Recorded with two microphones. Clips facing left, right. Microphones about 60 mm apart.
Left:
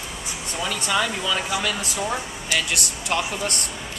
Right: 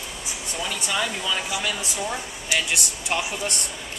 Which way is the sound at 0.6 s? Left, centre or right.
Centre.